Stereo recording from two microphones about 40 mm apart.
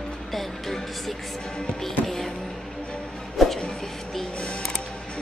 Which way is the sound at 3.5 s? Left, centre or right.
Left.